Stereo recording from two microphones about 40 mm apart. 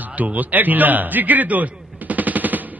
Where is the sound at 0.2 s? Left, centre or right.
Right.